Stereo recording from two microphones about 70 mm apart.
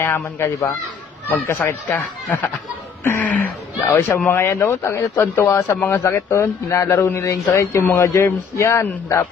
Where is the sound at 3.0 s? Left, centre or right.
Left.